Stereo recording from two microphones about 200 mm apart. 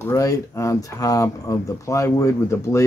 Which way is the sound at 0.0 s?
15° left (ahead or behind).